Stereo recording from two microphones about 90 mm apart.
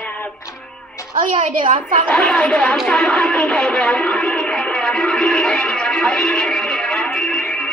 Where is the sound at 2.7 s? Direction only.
5° left (ahead or behind).